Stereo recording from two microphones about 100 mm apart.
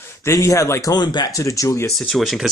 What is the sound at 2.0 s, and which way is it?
Speech, centre (ahead or behind).